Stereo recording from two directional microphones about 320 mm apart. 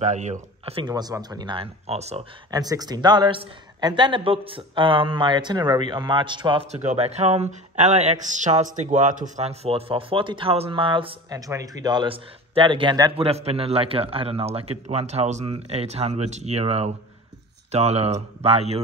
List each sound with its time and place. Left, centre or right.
0.0 s speech: right